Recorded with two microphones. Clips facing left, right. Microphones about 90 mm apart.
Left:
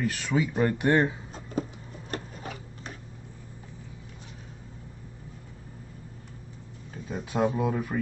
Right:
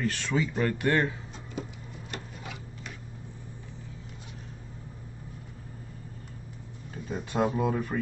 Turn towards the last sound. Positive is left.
turn(degrees=5)  # may be behind; listen again after turning